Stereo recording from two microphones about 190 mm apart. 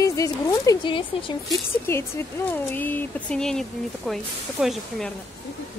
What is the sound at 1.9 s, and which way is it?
Speech, 10° left (ahead or behind).